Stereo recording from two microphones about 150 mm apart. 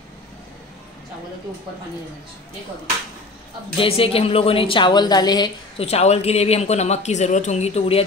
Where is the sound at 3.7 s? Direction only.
35° left (ahead or behind).